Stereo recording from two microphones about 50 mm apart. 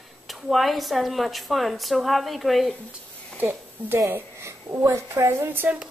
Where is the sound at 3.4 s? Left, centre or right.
Right.